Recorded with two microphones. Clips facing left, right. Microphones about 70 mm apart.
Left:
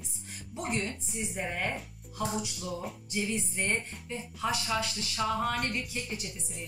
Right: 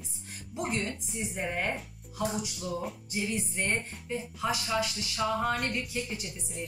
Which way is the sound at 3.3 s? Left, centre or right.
Right.